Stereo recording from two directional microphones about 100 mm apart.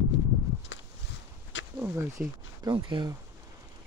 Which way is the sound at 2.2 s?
15° right (ahead or behind).